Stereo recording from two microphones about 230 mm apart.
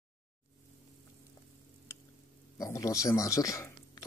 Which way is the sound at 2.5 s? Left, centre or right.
Centre.